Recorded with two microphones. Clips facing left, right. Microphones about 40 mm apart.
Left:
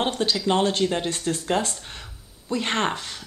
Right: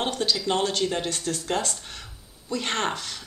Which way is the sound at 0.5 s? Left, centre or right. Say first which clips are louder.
Left 5 dB; left.